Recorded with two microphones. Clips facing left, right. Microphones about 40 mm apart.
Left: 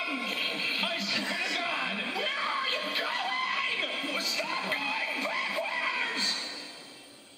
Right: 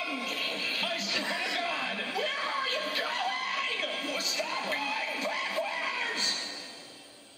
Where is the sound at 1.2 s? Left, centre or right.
Centre.